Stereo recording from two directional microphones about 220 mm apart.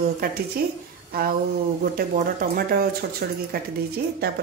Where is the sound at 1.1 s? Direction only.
45° right (ahead or behind).